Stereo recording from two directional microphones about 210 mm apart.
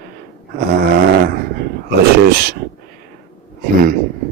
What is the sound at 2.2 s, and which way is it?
Speech, 45° right (ahead or behind).